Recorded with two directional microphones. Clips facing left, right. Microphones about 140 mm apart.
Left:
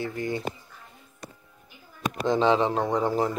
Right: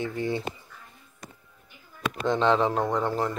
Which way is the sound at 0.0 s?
25° right (ahead or behind).